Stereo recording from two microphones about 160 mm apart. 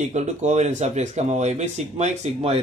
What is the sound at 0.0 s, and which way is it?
Speech, 45° right (ahead or behind).